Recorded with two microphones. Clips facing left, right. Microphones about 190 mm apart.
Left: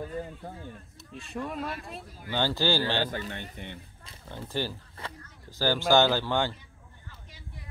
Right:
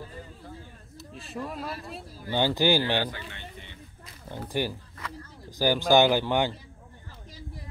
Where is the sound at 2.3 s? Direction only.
15° right (ahead or behind).